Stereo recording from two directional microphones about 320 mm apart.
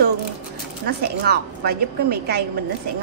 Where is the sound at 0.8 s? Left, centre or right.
Right.